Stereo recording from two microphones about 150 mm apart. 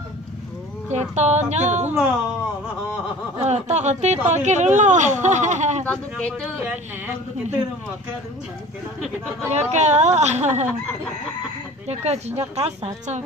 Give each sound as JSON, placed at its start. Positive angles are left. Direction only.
{"t": 0.9, "sound": "speech", "side_deg": -50}
{"t": 3.4, "sound": "speech", "side_deg": -50}
{"t": 5.9, "sound": "speech", "side_deg": 10}
{"t": 9.5, "sound": "speech", "side_deg": -50}
{"t": 11.9, "sound": "speech", "side_deg": -45}